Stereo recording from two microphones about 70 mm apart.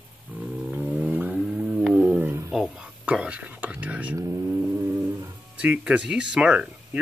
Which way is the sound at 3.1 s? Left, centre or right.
Centre.